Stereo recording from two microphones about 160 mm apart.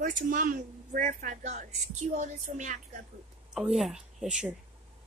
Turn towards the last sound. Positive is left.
turn(degrees=-5)  # may be behind; listen again after turning